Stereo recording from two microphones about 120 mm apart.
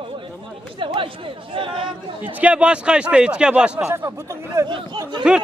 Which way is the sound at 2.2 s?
10° right (ahead or behind).